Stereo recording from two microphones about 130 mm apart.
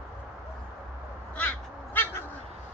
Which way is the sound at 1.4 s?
15° left (ahead or behind).